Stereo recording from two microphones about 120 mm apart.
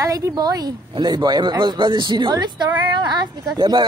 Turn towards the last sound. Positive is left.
turn(degrees=-40)  # may be behind; listen again after turning